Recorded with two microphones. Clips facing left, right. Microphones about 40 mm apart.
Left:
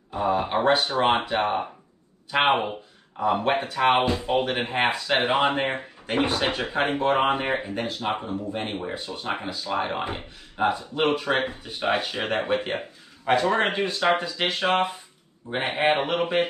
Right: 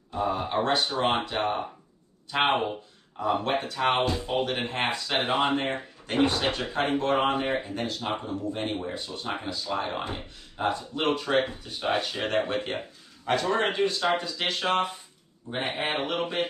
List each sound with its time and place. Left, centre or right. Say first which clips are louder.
0.1 s speech: left 4 dB; centre